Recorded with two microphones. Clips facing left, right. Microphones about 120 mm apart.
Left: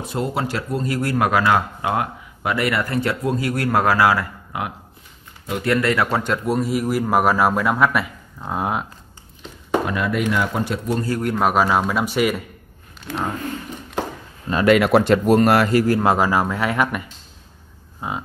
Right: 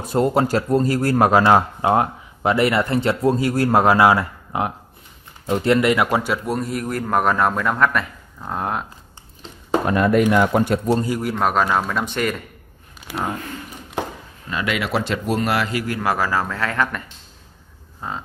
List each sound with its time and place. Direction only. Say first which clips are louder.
0.0 s a man's voice: right 6 dB; 45° right (ahead or behind); by 8.8 s 5° left (ahead or behind)
9.8 s speech: right 5 dB; 45° right (ahead or behind)
10.9 s a man's voice: right 3 dB; 25° right (ahead or behind)
11.1 s a man's voice: left 1 dB; centre (ahead or behind)
13.0 s speech: left 1 dB; 10° right (ahead or behind)
14.5 s speech: left 8 dB; 45° left (ahead or behind)
16.0 s speech: left 3 dB; 20° left (ahead or behind)
18.0 s speech: left 2 dB; 10° left (ahead or behind)